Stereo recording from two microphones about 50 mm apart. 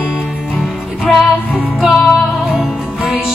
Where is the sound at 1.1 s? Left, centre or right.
Centre.